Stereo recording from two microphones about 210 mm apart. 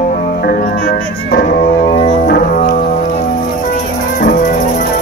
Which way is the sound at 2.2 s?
40° left (ahead or behind).